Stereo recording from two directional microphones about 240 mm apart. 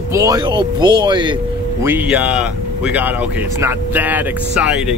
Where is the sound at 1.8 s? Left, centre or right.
Centre.